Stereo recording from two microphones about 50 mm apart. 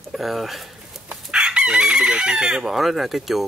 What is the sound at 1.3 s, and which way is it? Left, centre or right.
Chicken, centre.